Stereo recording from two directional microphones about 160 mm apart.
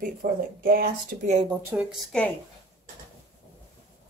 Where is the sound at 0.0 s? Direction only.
65° right (ahead or behind).